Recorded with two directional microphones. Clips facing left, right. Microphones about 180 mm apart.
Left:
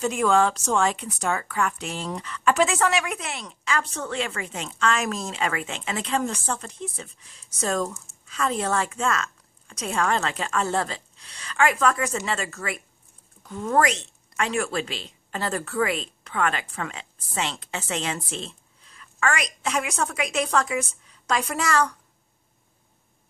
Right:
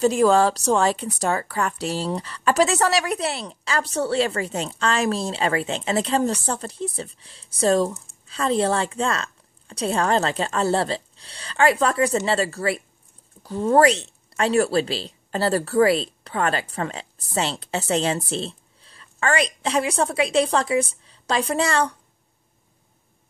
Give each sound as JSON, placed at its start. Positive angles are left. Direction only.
{"t": 0.0, "sound": "a woman's voice", "side_deg": -35}